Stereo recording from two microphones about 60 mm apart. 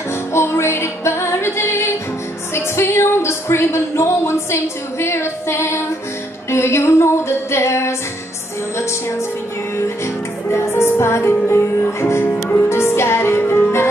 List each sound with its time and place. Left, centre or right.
0.3 s music: left
2.5 s speech: left
6.5 s female singing: left
10.5 s music: left